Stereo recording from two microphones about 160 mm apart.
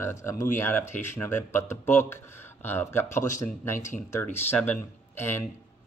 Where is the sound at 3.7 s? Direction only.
55° left (ahead or behind).